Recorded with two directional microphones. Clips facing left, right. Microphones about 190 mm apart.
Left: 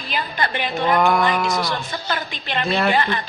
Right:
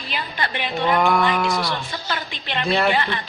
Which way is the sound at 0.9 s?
Centre (ahead or behind).